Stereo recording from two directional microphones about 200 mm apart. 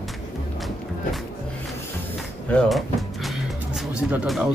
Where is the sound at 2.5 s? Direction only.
Centre (ahead or behind).